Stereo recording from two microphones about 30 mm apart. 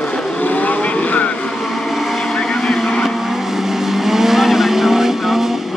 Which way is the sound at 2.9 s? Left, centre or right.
Centre.